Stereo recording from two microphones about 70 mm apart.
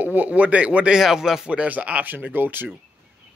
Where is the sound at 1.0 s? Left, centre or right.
Centre.